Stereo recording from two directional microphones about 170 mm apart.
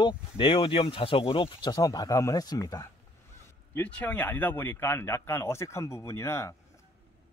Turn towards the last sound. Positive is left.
turn(degrees=15)  # may be behind; listen again after turning